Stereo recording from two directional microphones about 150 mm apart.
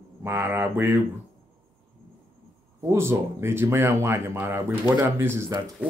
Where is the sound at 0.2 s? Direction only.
15° right (ahead or behind).